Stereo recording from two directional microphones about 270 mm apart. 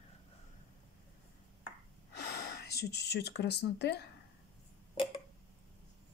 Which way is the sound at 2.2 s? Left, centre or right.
Left.